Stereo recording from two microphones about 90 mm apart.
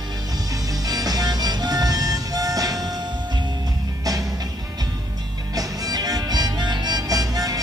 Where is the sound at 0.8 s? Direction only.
45° right (ahead or behind).